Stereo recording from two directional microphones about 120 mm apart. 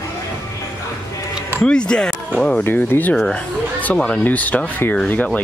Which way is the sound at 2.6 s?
20° left (ahead or behind).